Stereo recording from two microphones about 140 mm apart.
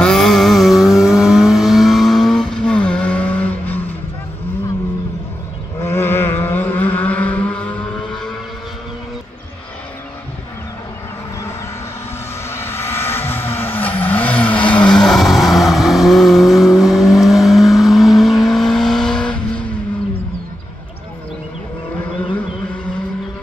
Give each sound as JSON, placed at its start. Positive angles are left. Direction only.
{"t": 0.0, "sound": "vehicle", "side_deg": 5}
{"t": 5.8, "sound": "vehicle", "side_deg": 20}
{"t": 12.4, "sound": "vehicle", "side_deg": 20}